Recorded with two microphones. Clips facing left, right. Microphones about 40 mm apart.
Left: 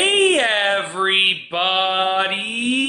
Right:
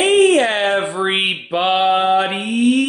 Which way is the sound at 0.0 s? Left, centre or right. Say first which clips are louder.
Right 4 dB; left.